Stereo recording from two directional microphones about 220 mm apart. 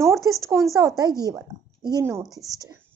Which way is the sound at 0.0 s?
15° right (ahead or behind).